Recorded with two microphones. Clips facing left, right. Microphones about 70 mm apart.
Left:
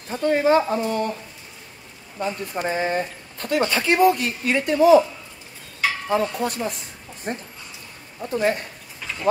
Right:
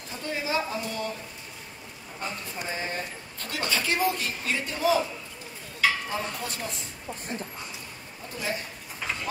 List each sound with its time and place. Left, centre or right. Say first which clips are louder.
0.1 s speech: left 12 dB; left
2.1 s speech: left 9 dB; left
6.0 s speech: left 10 dB; left